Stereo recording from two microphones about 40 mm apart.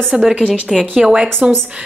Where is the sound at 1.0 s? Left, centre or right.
Right.